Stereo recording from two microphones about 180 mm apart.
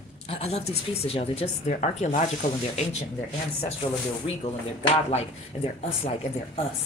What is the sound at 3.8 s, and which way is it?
Speech, 30° left (ahead or behind).